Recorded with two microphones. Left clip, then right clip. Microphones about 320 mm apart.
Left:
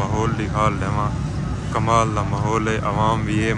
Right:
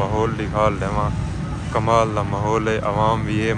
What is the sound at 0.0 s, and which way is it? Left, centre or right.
Speech, centre.